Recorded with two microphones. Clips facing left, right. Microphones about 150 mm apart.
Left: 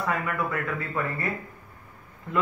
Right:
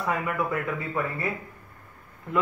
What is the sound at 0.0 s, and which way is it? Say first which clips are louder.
Speech: right 1 dB; 15° right (ahead or behind).